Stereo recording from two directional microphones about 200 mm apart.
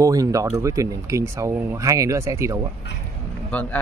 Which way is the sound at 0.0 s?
15° right (ahead or behind).